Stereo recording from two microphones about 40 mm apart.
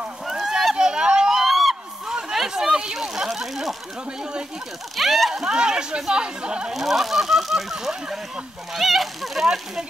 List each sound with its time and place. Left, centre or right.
0.7 s run: right
1.3 s a sound: centre
2.0 s a sound: centre
4.2 s speech: right
4.9 s speech: centre
5.4 s speech: centre
6.7 s speech: centre